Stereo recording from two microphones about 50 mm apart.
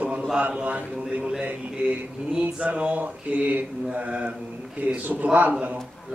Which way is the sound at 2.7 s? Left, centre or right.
Right.